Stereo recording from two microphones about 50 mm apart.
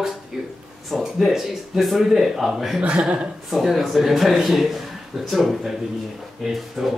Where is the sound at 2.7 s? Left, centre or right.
Right.